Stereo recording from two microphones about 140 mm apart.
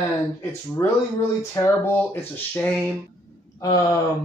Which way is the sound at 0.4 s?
20° left (ahead or behind).